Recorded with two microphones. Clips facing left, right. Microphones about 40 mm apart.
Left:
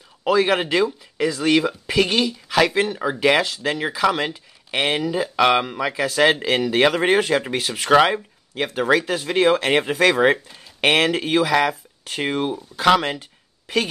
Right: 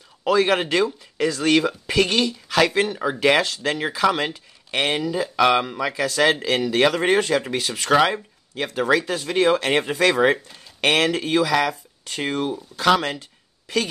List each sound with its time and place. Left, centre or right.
0.2 s speech: centre